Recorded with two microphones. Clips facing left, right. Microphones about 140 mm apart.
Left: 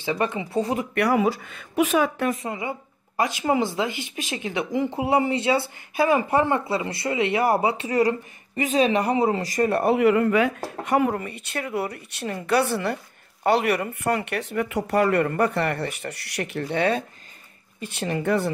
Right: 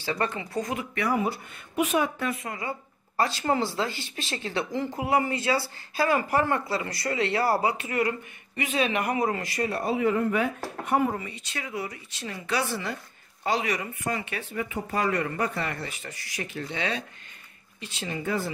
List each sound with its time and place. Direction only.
0.0 s speech: 20° left (ahead or behind)
0.6 s speech: 35° left (ahead or behind)
0.9 s speech: 85° left
2.2 s speech: 35° left (ahead or behind)
3.2 s speech: 15° left (ahead or behind)
9.5 s a woman's voice: 55° left (ahead or behind)